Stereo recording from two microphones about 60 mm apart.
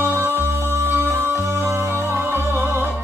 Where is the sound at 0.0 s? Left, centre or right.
Right.